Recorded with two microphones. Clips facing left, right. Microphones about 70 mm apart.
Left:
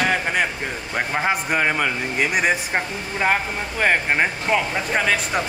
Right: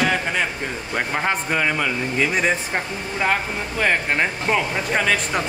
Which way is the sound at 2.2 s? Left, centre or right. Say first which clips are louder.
Left 1 dB; centre.